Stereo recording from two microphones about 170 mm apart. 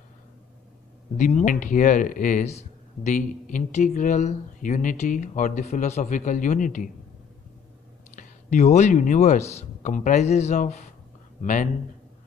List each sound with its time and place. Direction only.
1.1 s speech: 45° left (ahead or behind)
8.2 s a man's voice: 45° left (ahead or behind)